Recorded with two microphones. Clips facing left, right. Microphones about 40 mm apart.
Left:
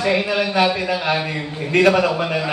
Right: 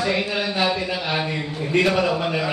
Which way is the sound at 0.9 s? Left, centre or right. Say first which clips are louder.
Left 4 dB; left.